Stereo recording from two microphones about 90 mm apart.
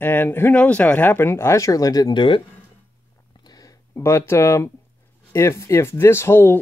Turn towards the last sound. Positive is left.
turn(degrees=25)  # may be behind; listen again after turning